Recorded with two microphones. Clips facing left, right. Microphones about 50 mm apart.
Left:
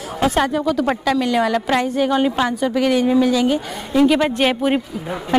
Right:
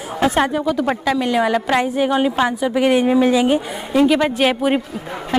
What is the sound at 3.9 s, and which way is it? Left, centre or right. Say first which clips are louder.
Speech: even; centre.